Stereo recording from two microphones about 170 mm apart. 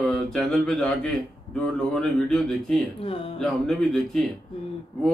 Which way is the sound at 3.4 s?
5° left (ahead or behind).